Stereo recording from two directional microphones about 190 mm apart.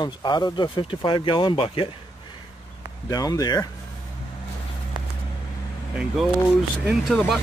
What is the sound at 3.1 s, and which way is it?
Speech, 20° left (ahead or behind).